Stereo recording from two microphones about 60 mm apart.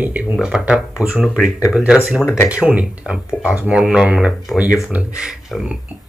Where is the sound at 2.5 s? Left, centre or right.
Right.